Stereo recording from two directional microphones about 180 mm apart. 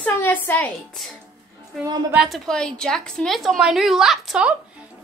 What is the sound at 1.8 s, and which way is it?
Speech, 15° right (ahead or behind).